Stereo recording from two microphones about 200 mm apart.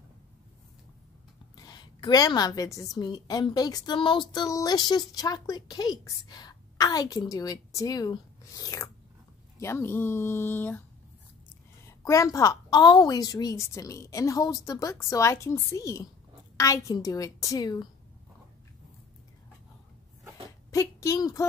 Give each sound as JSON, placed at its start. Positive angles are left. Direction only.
{"t": 1.7, "sound": "a woman's voice", "side_deg": 20}
{"t": 12.0, "sound": "a woman's voice", "side_deg": 15}
{"t": 20.4, "sound": "a sound", "side_deg": 15}